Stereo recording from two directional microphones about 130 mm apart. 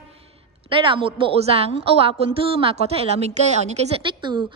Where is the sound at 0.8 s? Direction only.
40° right (ahead or behind).